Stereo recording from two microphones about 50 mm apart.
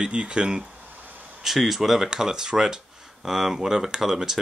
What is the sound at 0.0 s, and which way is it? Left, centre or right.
Speech, right.